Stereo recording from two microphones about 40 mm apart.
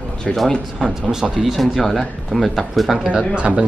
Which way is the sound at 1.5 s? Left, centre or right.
Centre.